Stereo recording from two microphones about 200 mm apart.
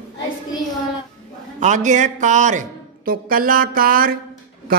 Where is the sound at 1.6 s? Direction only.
35° right (ahead or behind).